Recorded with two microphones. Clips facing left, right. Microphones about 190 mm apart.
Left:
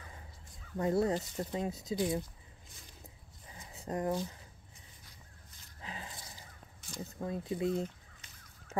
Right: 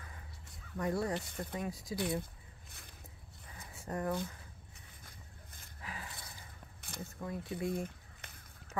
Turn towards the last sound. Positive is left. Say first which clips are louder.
# left 4 dB
turn(degrees=25)  # may be behind; listen again after turning